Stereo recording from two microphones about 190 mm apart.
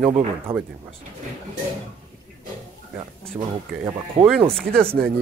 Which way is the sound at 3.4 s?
15° right (ahead or behind).